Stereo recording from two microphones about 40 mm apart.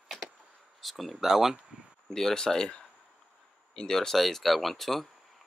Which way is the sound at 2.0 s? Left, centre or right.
Centre.